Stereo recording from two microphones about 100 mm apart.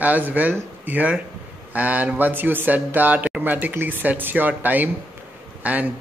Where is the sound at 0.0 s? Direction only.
15° right (ahead or behind).